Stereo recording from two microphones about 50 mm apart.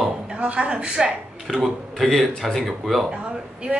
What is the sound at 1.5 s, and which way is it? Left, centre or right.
Speech, centre.